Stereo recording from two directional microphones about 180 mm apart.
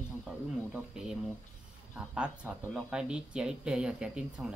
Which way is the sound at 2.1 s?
5° right (ahead or behind).